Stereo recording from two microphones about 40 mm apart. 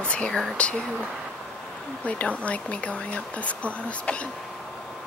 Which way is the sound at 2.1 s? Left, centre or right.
Left.